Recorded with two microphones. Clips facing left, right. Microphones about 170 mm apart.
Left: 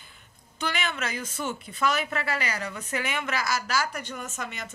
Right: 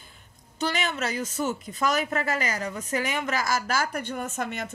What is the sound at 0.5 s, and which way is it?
A woman's voice, 45° right (ahead or behind).